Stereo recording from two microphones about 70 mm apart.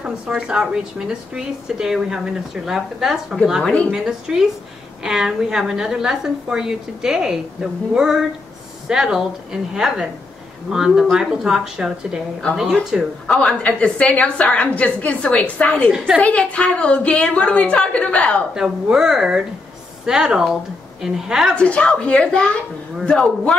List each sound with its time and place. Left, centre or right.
0.0 s speech: centre
3.6 s a woman's voice: centre
3.9 s speech: centre
13.4 s a woman's voice: centre
18.5 s speech: centre
21.5 s a woman's voice: centre